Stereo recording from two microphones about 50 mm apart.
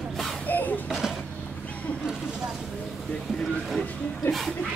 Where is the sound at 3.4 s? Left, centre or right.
Centre.